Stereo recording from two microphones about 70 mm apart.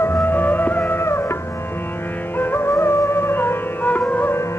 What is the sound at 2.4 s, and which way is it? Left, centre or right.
Music, left.